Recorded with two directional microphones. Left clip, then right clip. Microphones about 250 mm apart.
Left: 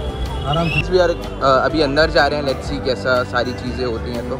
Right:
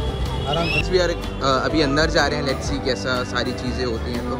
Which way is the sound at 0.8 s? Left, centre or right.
Centre.